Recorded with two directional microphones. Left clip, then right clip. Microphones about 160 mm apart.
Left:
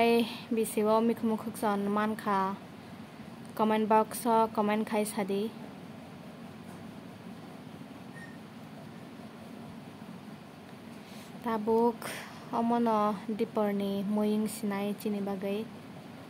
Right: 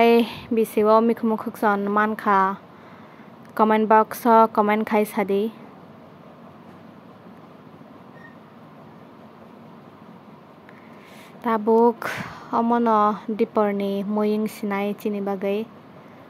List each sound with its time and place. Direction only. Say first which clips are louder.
0.0 s speech: right 10 dB; 20° right (ahead or behind)
3.5 s speech: right 10 dB; 20° right (ahead or behind)
11.4 s speech: right 10 dB; 20° right (ahead or behind)